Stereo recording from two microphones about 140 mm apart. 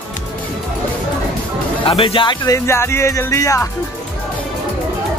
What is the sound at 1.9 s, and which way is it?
Speech, 40° left (ahead or behind).